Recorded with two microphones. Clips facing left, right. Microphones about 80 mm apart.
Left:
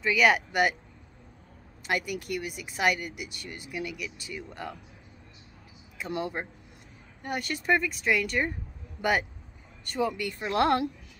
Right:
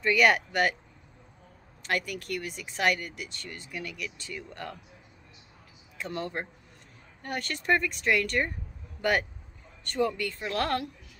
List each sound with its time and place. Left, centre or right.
0.0 s speech: centre
1.8 s speech: centre
5.9 s speech: centre
9.8 s speech: centre